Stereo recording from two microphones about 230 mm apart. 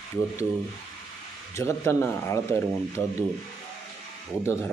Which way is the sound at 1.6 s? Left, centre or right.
Centre.